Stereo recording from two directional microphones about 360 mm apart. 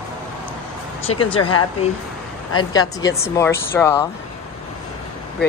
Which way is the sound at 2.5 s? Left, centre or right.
Centre.